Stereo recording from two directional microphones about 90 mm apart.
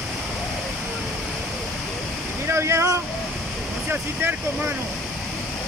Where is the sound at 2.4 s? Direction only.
30° right (ahead or behind).